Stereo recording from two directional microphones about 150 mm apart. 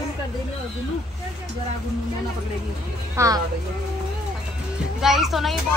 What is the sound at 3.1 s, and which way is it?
Speech, 20° right (ahead or behind).